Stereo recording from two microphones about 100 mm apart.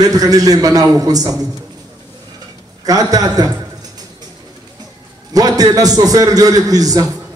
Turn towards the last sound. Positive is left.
turn(degrees=-40)  # may be behind; listen again after turning